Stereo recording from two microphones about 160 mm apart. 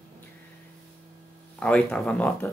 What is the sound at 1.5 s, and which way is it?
Speech, 5° left (ahead or behind).